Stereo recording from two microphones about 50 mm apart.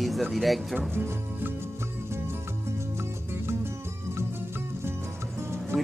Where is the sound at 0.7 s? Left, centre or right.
Right.